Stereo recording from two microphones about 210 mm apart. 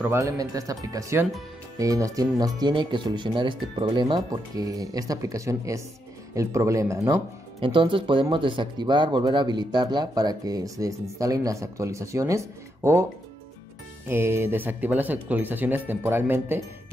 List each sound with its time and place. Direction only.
0.0 s speech: 15° right (ahead or behind)
14.0 s speech: 10° right (ahead or behind)